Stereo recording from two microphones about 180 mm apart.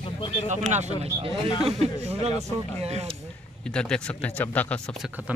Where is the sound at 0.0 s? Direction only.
30° left (ahead or behind).